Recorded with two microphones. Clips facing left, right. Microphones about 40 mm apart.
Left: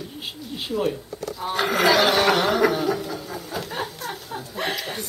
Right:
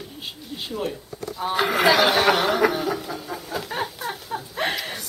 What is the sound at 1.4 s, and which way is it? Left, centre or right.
Snicker, centre.